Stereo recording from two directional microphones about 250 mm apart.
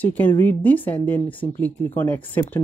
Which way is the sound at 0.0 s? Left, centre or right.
Centre.